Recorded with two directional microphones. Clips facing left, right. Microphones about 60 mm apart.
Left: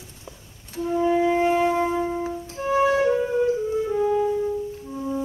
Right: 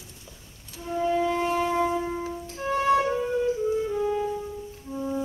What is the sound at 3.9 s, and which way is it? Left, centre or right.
Music, centre.